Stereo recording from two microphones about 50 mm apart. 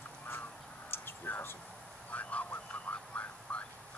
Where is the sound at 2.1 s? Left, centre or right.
Left.